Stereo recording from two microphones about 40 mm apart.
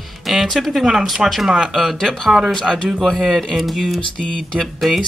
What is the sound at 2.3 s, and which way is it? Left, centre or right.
Speech, centre.